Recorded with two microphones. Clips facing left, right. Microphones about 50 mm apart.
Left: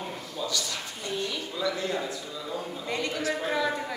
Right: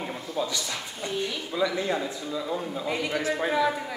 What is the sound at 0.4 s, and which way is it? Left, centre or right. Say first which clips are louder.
A man's voice: right 2 dB; right.